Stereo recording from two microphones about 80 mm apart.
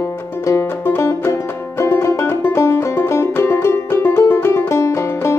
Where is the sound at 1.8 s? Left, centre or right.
Left.